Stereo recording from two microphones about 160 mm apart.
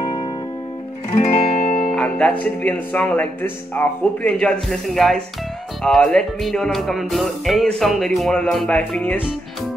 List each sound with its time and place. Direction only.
0.0 s music: 25° left (ahead or behind)
1.1 s music: 40° left (ahead or behind)
1.9 s speech: 10° left (ahead or behind)
5.8 s music: centre (ahead or behind)